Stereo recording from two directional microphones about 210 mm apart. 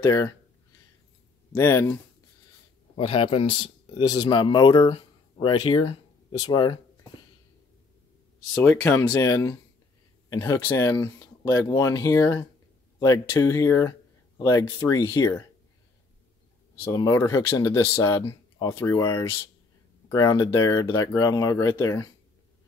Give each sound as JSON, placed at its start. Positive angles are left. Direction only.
{"t": 0.0, "sound": "speech", "side_deg": 15}
{"t": 1.5, "sound": "speech", "side_deg": 10}
{"t": 3.0, "sound": "speech", "side_deg": 25}
{"t": 8.6, "sound": "speech", "side_deg": 10}
{"t": 16.9, "sound": "speech", "side_deg": 15}